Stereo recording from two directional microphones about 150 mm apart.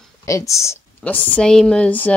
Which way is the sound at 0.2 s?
20° left (ahead or behind).